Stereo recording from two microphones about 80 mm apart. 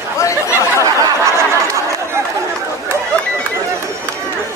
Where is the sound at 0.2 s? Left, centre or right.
Left.